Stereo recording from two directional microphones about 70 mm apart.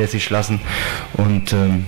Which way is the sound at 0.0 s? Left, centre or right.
Centre.